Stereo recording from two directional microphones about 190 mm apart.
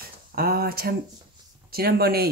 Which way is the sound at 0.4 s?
50° right (ahead or behind).